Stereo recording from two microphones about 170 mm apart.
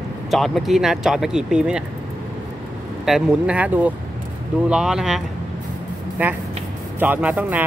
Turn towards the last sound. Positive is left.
turn(degrees=-10)  # may be behind; listen again after turning